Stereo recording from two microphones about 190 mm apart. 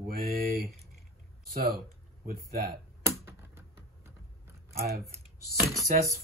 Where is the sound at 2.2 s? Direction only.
50° right (ahead or behind).